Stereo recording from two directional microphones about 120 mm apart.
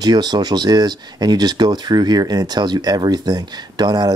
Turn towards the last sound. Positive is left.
turn(degrees=-35)  # may be behind; listen again after turning